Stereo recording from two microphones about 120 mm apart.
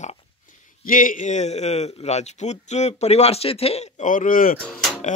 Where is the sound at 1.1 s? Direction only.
80° left.